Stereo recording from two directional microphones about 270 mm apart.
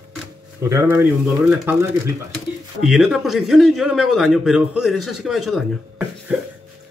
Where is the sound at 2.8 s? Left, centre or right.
Centre.